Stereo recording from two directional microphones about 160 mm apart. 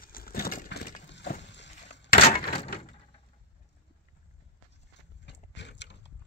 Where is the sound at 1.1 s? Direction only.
90° left.